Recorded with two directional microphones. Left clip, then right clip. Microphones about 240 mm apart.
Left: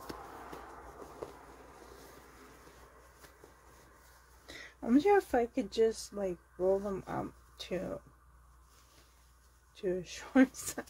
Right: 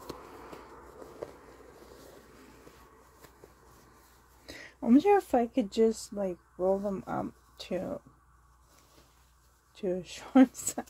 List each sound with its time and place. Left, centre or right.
4.5 s speech: right
9.8 s speech: right